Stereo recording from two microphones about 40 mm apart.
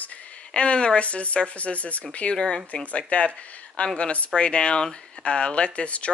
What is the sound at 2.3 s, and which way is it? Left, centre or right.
Speech, left.